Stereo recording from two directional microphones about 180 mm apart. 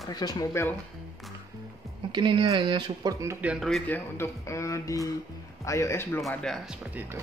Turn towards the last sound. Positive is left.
turn(degrees=-5)  # may be behind; listen again after turning